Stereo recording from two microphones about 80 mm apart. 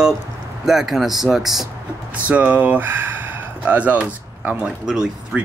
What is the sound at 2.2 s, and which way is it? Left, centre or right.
Speech, centre.